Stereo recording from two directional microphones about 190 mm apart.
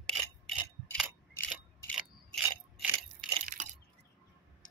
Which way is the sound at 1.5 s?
5° right (ahead or behind).